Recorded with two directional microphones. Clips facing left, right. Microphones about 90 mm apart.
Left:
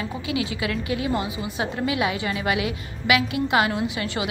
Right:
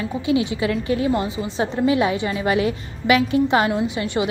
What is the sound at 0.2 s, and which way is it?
A woman's voice, 30° right (ahead or behind).